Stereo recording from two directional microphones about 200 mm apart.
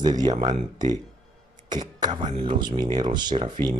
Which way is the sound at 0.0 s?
20° right (ahead or behind).